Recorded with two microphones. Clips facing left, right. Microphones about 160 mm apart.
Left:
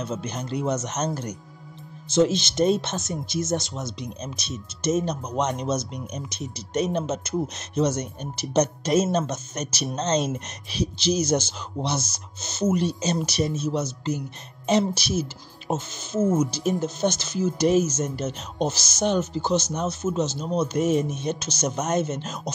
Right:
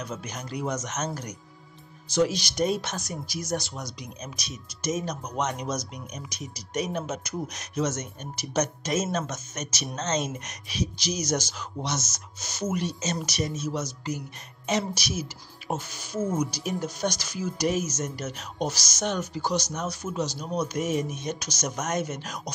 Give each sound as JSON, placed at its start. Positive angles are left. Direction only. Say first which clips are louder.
{"t": 0.0, "sound": "speech", "louder": "left 5 dB", "side_deg": 25}